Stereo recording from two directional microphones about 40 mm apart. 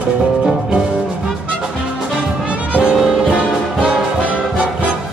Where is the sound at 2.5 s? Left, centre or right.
Right.